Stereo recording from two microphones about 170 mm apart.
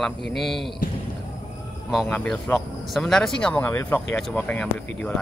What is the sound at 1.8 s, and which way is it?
Speech, 5° left (ahead or behind).